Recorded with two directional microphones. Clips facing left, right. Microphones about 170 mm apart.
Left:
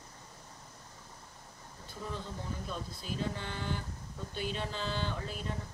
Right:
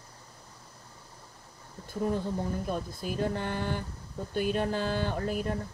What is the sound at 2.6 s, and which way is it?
Speech, 50° right (ahead or behind).